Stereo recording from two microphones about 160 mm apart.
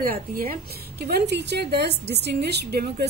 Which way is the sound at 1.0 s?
85° right.